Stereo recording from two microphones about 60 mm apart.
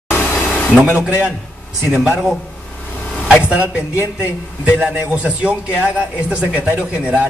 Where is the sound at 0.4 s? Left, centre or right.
Left.